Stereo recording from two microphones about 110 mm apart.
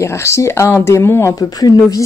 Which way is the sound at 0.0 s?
25° left (ahead or behind).